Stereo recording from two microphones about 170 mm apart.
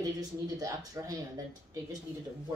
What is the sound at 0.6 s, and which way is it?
Speech, 20° right (ahead or behind).